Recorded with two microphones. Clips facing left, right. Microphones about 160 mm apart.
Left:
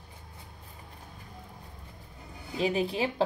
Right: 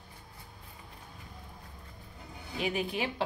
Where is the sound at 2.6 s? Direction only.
30° left (ahead or behind).